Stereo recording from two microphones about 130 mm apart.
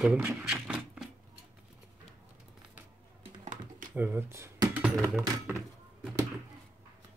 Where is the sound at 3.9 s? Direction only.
15° right (ahead or behind).